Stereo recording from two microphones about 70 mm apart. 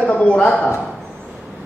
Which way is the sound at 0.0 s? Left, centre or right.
Centre.